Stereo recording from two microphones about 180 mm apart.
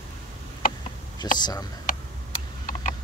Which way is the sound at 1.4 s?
20° left (ahead or behind).